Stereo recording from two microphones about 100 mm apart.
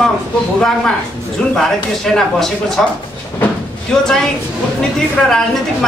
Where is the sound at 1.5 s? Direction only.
5° left (ahead or behind).